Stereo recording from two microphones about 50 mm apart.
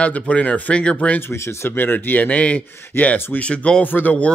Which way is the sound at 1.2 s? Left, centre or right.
Left.